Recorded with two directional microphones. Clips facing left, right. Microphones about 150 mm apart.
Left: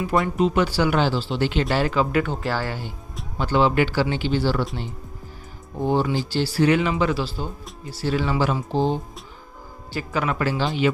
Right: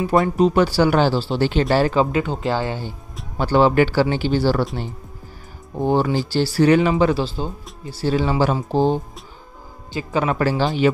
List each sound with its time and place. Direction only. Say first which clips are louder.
0.0 s speech: right 4 dB; 35° right (ahead or behind)
2.1 s speech: right 2 dB; 20° right (ahead or behind)
3.3 s speech: right 4 dB; 40° right (ahead or behind)
5.9 s speech: right 3 dB; 45° right (ahead or behind)
9.9 s speech: right 4 dB; 25° right (ahead or behind)
10.3 s speech: right 5 dB; 40° right (ahead or behind)